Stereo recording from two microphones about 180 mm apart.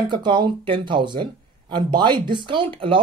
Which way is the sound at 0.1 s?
25° right (ahead or behind).